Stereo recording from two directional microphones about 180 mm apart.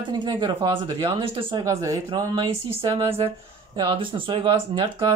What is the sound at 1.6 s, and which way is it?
Speech, 15° right (ahead or behind).